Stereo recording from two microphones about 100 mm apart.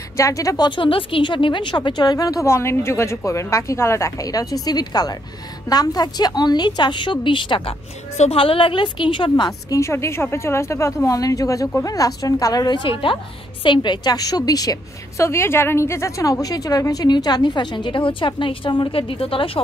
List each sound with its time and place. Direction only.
0.2 s speech: 35° left (ahead or behind)
0.7 s a woman's voice: 60° left (ahead or behind)
8.2 s a woman's voice: 75° left (ahead or behind); by 9.5 s 55° left (ahead or behind)
9.5 s a woman's voice: 30° left (ahead or behind); by 19.6 s 65° left (ahead or behind)